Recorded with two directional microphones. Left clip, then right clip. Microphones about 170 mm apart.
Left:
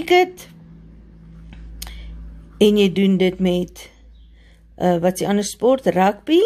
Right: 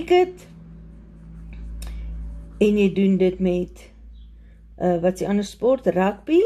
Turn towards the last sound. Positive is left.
turn(degrees=25)  # may be behind; listen again after turning